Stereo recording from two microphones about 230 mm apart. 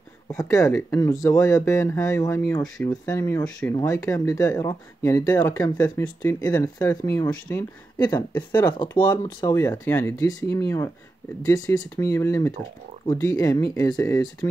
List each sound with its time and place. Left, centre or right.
0.3 s speech: centre
8.6 s speech: centre